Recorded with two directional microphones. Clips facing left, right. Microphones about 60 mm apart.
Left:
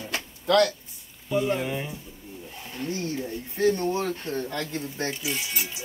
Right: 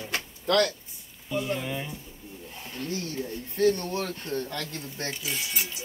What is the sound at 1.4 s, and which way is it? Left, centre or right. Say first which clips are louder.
Speech: left 4 dB; centre.